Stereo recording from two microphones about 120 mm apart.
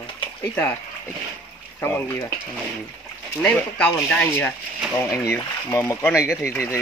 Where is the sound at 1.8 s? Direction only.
15° left (ahead or behind).